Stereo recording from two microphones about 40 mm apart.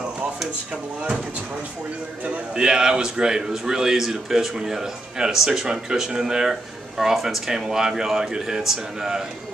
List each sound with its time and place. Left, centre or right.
2.5 s a man's voice: centre
7.0 s a man's voice: centre